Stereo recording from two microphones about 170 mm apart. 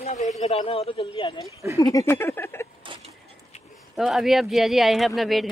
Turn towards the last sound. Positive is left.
turn(degrees=0)  # may be behind; listen again after turning